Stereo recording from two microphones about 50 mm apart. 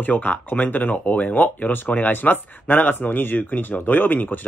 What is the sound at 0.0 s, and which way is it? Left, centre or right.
Speech, left.